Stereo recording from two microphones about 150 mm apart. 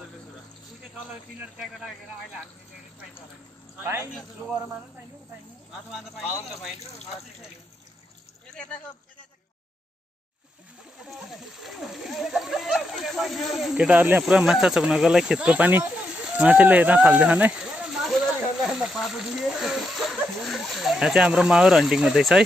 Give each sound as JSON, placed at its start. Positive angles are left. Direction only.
{"t": 1.6, "sound": "speech", "side_deg": 0}
{"t": 3.8, "sound": "a man's voice", "side_deg": -15}
{"t": 5.9, "sound": "speech", "side_deg": -5}
{"t": 11.1, "sound": "splash", "side_deg": 0}
{"t": 14.2, "sound": "speech", "side_deg": 0}